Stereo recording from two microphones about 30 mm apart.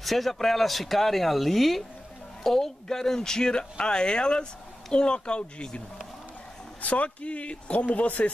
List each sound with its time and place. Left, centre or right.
0.0 s speech: centre; by 5.9 s left
6.8 s speech: left
7.9 s speech: left